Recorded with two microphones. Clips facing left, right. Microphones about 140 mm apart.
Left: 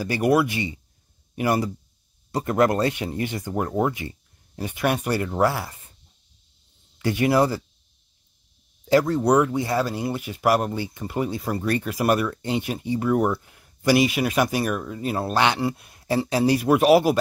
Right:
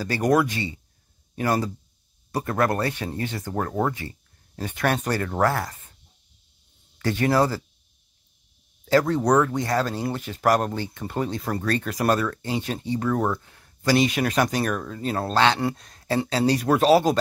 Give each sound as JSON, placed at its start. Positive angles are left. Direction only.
{"t": 0.0, "sound": "speech", "side_deg": 10}
{"t": 7.0, "sound": "speech", "side_deg": 15}
{"t": 9.0, "sound": "speech", "side_deg": 0}